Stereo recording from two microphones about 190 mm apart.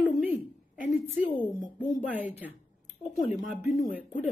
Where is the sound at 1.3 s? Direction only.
20° left (ahead or behind).